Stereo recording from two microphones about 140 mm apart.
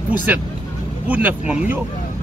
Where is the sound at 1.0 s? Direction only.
10° right (ahead or behind).